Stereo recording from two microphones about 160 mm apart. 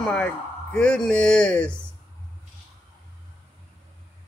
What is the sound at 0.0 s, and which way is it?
Speech, 10° left (ahead or behind).